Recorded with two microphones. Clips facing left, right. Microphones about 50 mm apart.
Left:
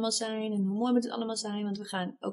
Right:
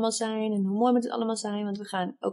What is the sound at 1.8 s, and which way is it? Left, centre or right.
Speech, centre.